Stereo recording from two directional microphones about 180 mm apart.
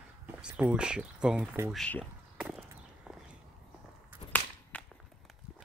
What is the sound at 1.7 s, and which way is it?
Speech, 5° left (ahead or behind).